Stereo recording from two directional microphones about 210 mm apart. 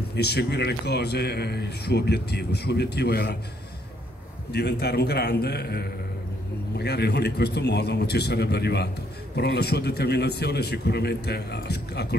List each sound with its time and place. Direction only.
0.1 s speech: 50° left (ahead or behind)
4.5 s speech: 55° left (ahead or behind)